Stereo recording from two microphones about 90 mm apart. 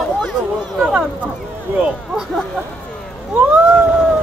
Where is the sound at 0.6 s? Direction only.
10° right (ahead or behind).